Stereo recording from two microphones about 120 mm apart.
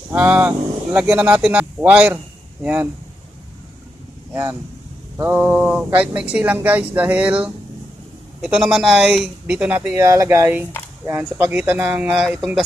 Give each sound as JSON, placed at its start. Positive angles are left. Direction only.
{"t": 0.1, "sound": "speech", "side_deg": -10}
{"t": 4.3, "sound": "a man's voice", "side_deg": -25}
{"t": 12.2, "sound": "a man's voice", "side_deg": 0}